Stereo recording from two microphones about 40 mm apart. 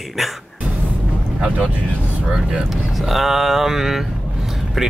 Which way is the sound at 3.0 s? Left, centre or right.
Centre.